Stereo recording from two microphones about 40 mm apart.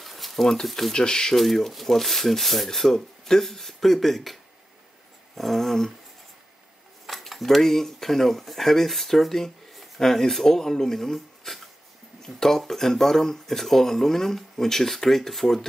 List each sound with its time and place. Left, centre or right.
0.0 s a sound: centre
0.7 s speech: centre
0.9 s speech: centre
1.3 s speech: centre
7.1 s speech: centre